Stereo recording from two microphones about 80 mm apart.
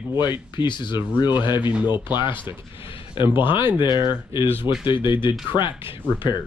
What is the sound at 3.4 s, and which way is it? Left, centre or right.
Speech, left.